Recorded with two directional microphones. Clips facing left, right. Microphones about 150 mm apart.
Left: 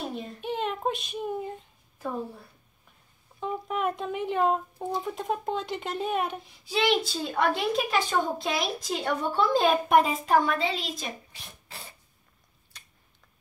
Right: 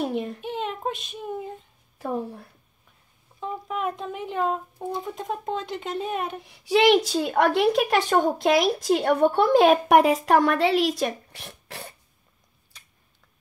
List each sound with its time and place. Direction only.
0.0 s a child's voice: 65° right (ahead or behind)
0.4 s a sound: centre (ahead or behind)
3.3 s speech: centre (ahead or behind)
6.4 s a child's voice: 70° right (ahead or behind)